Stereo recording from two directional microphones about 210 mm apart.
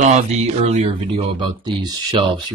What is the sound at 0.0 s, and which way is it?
Speech, 35° right (ahead or behind).